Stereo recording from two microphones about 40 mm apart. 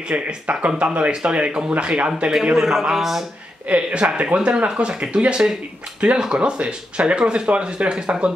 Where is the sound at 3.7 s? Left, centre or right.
Right.